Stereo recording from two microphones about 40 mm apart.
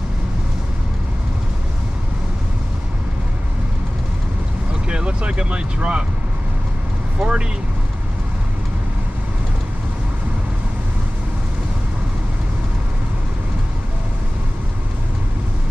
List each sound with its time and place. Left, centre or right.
4.8 s vehicle: right
7.2 s vehicle: right